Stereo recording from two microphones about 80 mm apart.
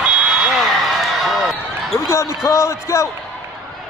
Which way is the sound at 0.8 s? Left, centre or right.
Centre.